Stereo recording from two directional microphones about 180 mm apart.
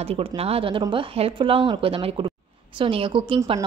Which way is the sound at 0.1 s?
30° right (ahead or behind).